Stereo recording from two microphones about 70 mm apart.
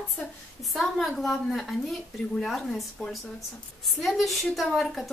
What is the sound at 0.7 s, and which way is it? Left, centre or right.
A woman's voice, centre.